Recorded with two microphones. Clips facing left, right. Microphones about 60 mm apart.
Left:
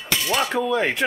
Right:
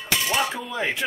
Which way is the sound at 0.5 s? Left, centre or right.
Left.